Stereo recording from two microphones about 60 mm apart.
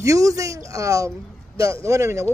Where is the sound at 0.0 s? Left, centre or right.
Right.